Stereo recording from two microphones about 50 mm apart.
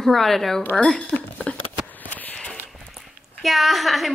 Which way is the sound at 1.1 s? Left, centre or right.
Left.